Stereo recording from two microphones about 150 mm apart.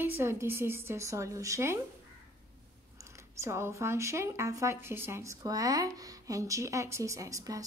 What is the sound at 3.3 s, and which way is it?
Speech, 20° right (ahead or behind).